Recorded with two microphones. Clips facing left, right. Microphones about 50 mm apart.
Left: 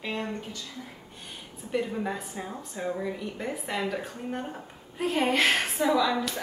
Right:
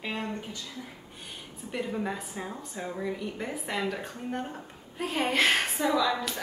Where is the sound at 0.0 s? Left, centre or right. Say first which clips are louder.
Left 1 dB; centre.